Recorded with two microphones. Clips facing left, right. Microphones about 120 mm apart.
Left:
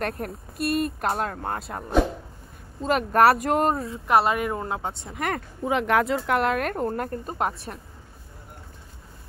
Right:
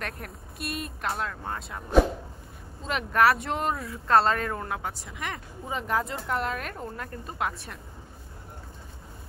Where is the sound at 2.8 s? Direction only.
45° left (ahead or behind).